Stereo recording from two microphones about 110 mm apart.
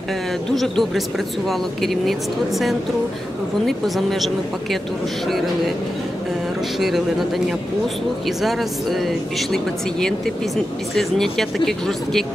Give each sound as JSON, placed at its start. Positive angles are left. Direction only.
{"t": 0.6, "sound": "speech", "side_deg": 0}
{"t": 3.6, "sound": "speech", "side_deg": 0}
{"t": 6.8, "sound": "speech", "side_deg": 0}